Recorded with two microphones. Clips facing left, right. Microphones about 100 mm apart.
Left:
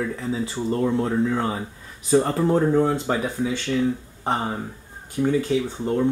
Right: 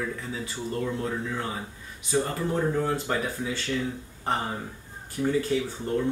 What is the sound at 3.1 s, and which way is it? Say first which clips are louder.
Speech: left 5 dB; 10° left (ahead or behind).